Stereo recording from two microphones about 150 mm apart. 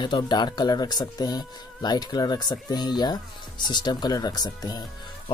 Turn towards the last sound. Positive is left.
turn(degrees=25)  # may be behind; listen again after turning